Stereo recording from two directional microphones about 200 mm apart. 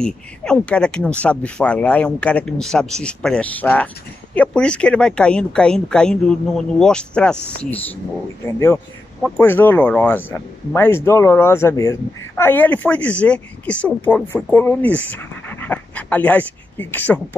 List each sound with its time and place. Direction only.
0.0 s speech: 5° left (ahead or behind)
9.2 s speech: 10° left (ahead or behind)